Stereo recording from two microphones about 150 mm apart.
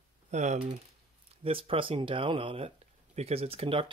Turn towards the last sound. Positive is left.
turn(degrees=-40)  # may be behind; listen again after turning